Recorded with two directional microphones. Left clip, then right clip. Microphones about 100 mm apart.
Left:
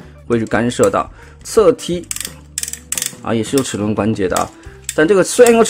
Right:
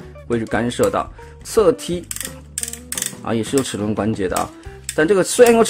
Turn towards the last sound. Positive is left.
turn(degrees=20)  # may be behind; listen again after turning